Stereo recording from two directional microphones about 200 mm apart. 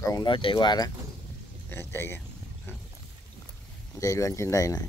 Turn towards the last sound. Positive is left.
turn(degrees=15)  # may be behind; listen again after turning